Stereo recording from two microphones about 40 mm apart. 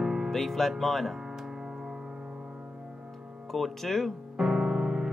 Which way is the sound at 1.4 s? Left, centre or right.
Centre.